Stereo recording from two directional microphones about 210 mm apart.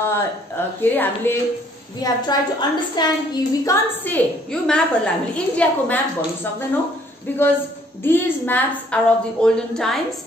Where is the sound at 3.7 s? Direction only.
10° left (ahead or behind).